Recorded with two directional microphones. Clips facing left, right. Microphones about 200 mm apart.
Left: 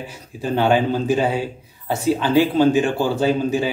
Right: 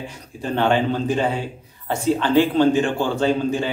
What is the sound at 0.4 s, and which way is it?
Speech, 10° left (ahead or behind).